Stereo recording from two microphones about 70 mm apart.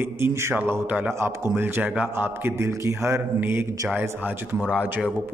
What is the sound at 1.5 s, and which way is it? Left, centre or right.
A man's voice, right.